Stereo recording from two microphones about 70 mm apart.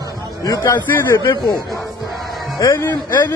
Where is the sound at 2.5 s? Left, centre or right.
Left.